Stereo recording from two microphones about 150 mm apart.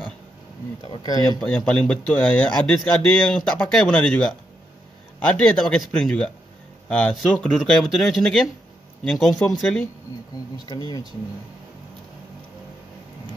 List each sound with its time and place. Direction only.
1.0 s speech: 25° left (ahead or behind)
1.4 s speech: 5° left (ahead or behind)
10.6 s speech: 30° left (ahead or behind)